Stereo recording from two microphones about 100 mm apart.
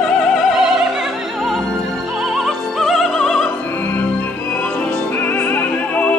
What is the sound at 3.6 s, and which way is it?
Opera, 15° left (ahead or behind).